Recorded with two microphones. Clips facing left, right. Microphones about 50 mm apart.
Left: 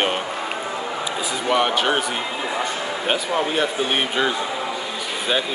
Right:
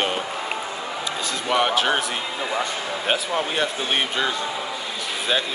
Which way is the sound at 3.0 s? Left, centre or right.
Centre.